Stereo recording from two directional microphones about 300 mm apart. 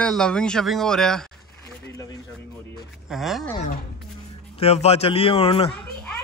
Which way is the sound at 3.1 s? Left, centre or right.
Centre.